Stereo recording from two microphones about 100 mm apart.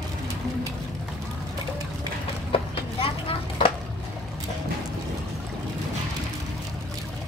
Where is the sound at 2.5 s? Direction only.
65° left (ahead or behind).